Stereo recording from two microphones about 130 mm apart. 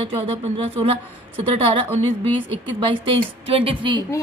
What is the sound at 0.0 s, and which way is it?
Speech, 50° right (ahead or behind).